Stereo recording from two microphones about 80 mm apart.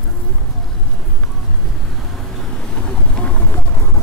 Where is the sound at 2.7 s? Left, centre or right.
Centre.